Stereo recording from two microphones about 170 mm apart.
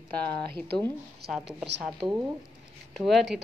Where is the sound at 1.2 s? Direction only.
70° right (ahead or behind).